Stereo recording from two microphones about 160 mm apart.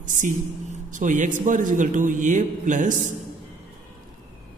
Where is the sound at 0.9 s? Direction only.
50° right (ahead or behind).